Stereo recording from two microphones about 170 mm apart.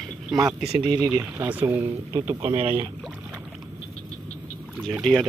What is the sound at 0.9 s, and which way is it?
Speech, 15° right (ahead or behind).